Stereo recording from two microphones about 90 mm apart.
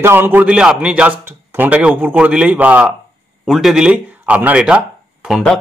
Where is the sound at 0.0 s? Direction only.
25° right (ahead or behind).